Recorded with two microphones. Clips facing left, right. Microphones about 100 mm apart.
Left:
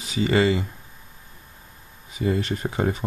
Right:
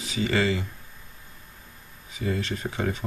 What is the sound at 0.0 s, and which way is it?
Speech, 30° left (ahead or behind).